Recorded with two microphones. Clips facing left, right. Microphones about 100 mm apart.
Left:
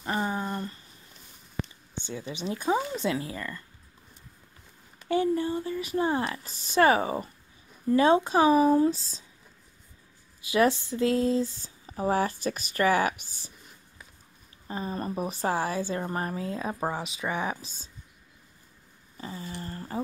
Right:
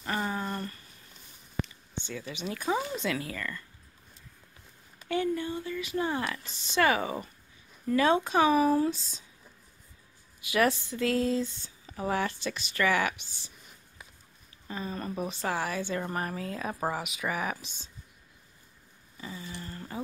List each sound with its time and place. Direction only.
0.0 s a sound: 20° left (ahead or behind)
2.0 s speech: 30° left (ahead or behind)
5.0 s speech: 30° left (ahead or behind)
10.5 s speech: 30° left (ahead or behind)
13.1 s speech: 45° left (ahead or behind)
14.7 s speech: 30° left (ahead or behind)
19.1 s speech: 35° left (ahead or behind)